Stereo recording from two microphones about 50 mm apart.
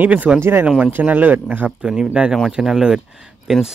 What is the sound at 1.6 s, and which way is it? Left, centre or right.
Speech, centre.